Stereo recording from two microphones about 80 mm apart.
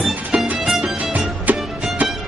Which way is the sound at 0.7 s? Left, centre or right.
Centre.